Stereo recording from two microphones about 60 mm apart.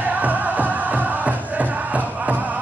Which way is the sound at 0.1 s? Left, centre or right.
Right.